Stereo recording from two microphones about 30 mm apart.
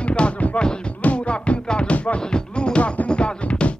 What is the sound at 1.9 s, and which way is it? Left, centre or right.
Music, left.